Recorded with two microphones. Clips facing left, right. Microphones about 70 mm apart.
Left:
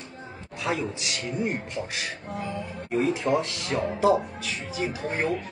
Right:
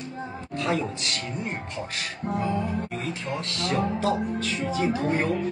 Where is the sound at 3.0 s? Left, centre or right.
Centre.